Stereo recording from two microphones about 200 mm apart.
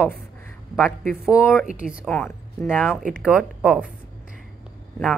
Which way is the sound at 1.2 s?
5° right (ahead or behind).